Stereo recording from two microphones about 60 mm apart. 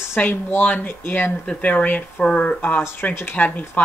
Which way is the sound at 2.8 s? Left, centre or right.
Left.